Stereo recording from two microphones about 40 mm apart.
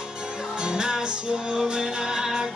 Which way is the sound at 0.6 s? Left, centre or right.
Centre.